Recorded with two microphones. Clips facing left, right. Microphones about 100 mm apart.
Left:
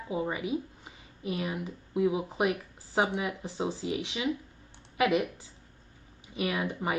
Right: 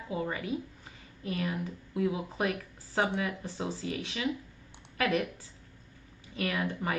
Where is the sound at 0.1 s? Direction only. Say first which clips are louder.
Left 2 dB; 15° left (ahead or behind).